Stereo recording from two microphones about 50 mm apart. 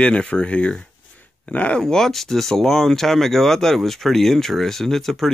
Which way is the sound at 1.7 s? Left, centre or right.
Centre.